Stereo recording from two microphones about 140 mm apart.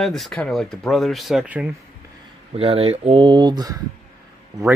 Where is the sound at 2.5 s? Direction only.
45° right (ahead or behind).